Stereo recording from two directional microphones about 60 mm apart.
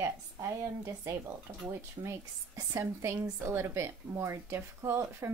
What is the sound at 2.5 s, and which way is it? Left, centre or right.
Speech, right.